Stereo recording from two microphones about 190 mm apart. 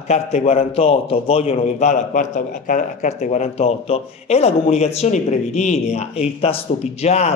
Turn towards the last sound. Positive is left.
turn(degrees=35)  # may be behind; listen again after turning